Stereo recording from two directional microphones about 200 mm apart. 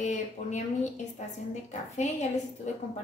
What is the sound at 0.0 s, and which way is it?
Speech, 35° left (ahead or behind).